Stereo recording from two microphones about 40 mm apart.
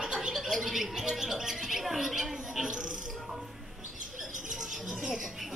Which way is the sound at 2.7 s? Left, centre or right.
Centre.